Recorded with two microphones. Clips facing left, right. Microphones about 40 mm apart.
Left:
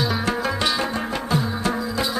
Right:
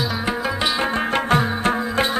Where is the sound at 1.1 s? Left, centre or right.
Right.